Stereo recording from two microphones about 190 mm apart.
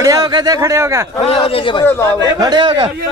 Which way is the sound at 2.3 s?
25° right (ahead or behind).